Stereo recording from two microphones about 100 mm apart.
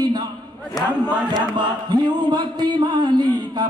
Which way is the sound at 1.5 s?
50° right (ahead or behind).